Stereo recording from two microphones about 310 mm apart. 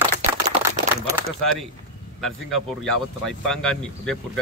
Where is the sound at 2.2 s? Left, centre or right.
Centre.